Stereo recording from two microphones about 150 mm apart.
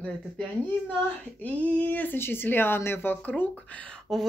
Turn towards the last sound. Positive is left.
turn(degrees=0)  # may be behind; listen again after turning